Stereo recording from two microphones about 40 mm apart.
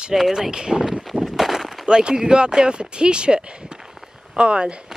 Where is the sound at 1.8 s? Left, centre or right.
Right.